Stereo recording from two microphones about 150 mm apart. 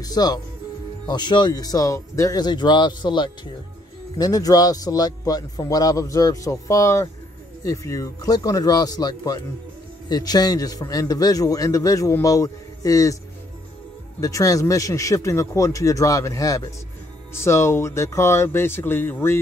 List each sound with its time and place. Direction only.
0.0 s a man's voice: 25° left (ahead or behind)
14.2 s a man's voice: 20° left (ahead or behind)